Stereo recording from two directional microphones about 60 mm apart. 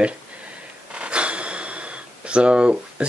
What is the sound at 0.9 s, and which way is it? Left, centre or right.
Speech, centre.